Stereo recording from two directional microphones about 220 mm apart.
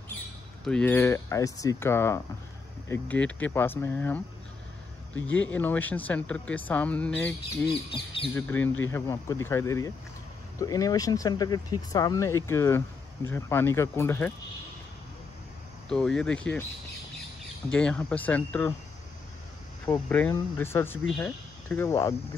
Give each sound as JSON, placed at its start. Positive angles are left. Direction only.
{"t": 0.7, "sound": "speech", "side_deg": 5}
{"t": 5.5, "sound": "speech", "side_deg": 10}
{"t": 7.9, "sound": "speech", "side_deg": 25}
{"t": 8.4, "sound": "speech", "side_deg": 10}
{"t": 15.9, "sound": "speech", "side_deg": 5}
{"t": 17.7, "sound": "speech", "side_deg": 5}
{"t": 19.9, "sound": "speech", "side_deg": 10}